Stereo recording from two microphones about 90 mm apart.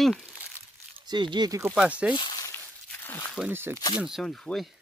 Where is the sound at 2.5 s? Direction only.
25° left (ahead or behind).